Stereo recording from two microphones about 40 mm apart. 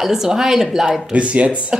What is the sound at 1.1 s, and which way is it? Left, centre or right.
Speech, right.